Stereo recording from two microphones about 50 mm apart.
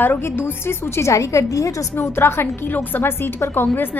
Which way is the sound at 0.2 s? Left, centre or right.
Left.